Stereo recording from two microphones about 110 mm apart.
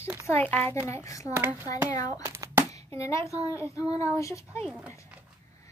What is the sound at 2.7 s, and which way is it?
A child's voice, 25° left (ahead or behind).